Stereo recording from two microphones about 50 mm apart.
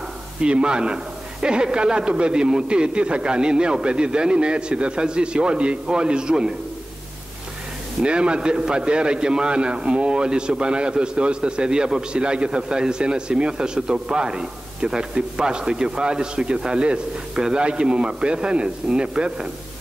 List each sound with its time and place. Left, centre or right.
0.4 s a man's voice: right
8.0 s a man's voice: right